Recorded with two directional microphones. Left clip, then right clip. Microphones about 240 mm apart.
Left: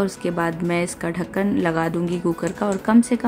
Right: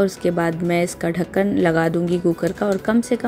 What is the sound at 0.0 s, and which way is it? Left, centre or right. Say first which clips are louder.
Speech: right 3 dB; centre.